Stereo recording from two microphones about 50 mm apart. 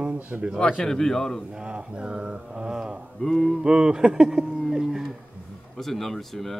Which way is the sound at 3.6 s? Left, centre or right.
Centre.